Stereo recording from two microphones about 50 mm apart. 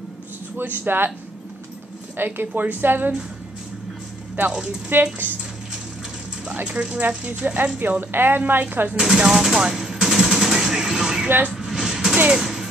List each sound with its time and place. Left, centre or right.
0.6 s speech: right
2.1 s a woman's voice: right
4.9 s speech: right
6.6 s a woman's voice: right
8.9 s speech: centre
9.6 s machine gun: centre
10.5 s music: centre
11.2 s speech: right
11.5 s vehicle: centre
12.4 s music: centre